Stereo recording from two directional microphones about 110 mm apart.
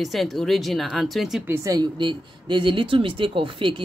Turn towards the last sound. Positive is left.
turn(degrees=-50)  # may be behind; listen again after turning